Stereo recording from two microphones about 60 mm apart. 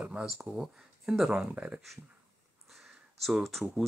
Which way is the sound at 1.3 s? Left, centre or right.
Centre.